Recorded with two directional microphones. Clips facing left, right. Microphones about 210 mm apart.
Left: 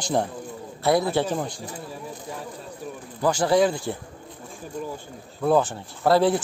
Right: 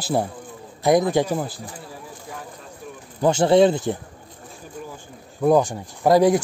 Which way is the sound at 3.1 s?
25° right (ahead or behind).